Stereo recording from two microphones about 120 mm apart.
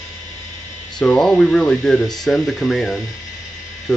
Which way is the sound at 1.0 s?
5° left (ahead or behind).